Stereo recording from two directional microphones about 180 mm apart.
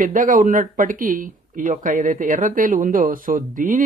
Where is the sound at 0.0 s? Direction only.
50° right (ahead or behind).